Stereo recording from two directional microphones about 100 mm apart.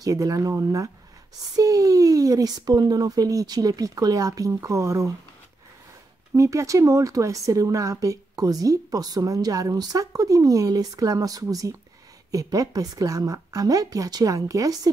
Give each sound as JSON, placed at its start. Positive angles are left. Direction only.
{"t": 0.0, "sound": "a woman's voice", "side_deg": -35}
{"t": 6.3, "sound": "a woman's voice", "side_deg": -30}